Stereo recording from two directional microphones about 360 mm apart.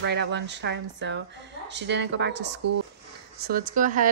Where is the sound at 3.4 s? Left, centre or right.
Right.